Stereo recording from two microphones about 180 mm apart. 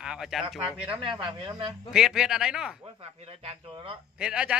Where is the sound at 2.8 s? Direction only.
30° right (ahead or behind).